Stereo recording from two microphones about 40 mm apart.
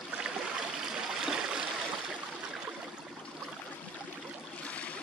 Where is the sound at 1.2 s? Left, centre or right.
Centre.